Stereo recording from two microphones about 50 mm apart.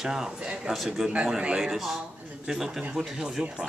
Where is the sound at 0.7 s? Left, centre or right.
Centre.